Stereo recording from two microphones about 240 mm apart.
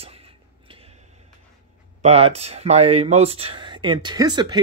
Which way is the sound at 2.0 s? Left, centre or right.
Right.